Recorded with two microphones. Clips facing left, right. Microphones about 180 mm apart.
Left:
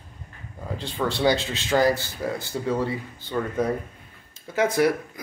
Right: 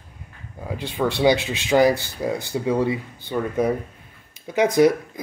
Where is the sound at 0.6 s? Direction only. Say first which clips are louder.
Right 3 dB; 15° right (ahead or behind).